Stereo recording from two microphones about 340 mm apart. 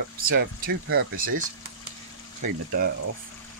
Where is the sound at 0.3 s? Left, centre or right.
Right.